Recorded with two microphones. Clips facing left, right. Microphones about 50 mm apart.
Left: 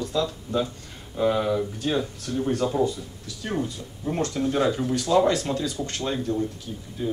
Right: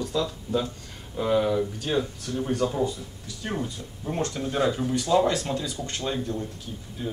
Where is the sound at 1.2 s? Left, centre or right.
Centre.